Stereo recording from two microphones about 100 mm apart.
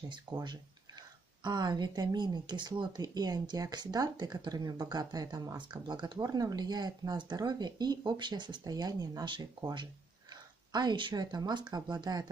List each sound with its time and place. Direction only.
0.1 s speech: 50° right (ahead or behind)
5.6 s speech: 45° right (ahead or behind)